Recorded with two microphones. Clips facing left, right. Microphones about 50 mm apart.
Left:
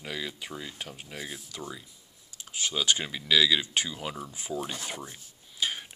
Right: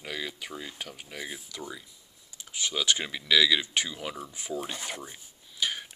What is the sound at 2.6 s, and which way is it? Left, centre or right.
Speech, left.